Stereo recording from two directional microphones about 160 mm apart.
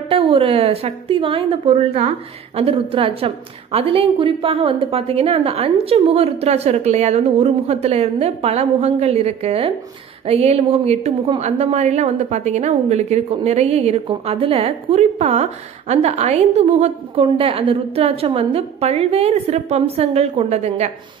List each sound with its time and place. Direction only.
0.1 s a woman's voice: 35° right (ahead or behind)